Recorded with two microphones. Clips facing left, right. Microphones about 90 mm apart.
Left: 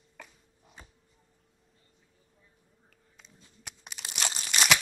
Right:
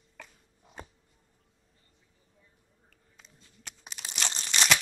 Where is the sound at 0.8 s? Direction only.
55° right (ahead or behind).